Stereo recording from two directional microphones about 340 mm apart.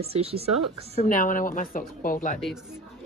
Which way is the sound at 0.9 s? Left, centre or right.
Left.